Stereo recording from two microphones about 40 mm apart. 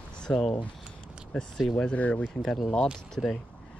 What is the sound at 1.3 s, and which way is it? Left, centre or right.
Speech, centre.